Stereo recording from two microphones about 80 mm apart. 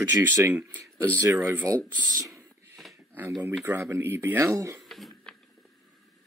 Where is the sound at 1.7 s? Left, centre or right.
Right.